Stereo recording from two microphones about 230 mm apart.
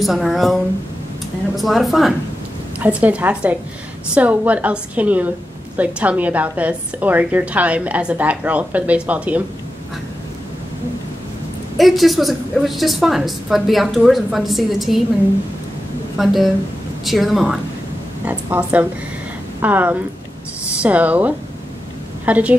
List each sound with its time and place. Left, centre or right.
0.0 s a woman's voice: centre
1.6 s a woman's voice: centre
11.8 s a woman's voice: centre
16.2 s a woman's voice: centre